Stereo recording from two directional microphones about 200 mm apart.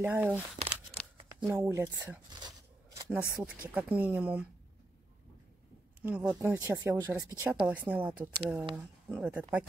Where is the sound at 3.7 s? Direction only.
10° right (ahead or behind).